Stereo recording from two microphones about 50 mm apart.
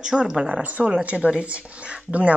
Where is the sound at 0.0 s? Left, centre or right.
Centre.